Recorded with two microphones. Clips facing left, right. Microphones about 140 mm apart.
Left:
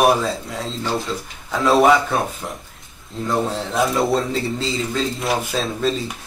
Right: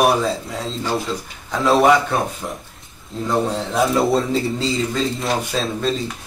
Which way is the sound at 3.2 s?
Centre (ahead or behind).